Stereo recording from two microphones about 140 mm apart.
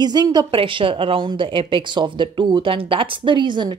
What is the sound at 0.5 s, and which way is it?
Speech, 40° right (ahead or behind).